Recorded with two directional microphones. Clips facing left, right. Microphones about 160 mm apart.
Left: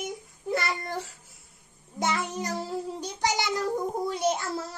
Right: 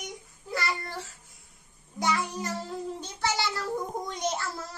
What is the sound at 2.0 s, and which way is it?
A child's voice, 25° left (ahead or behind).